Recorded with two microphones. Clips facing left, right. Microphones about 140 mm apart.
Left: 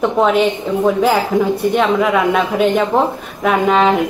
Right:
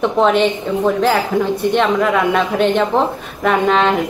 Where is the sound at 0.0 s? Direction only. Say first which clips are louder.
Even; 5° left (ahead or behind).